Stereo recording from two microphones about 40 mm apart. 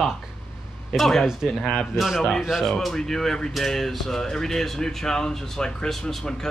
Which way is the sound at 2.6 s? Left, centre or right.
Centre.